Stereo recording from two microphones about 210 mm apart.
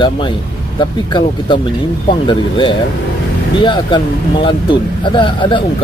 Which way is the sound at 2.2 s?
25° left (ahead or behind).